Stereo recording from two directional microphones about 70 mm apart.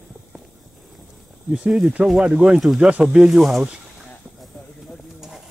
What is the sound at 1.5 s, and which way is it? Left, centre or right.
Speech, centre.